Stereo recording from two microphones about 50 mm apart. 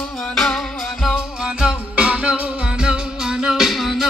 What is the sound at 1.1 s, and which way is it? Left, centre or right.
Music, centre.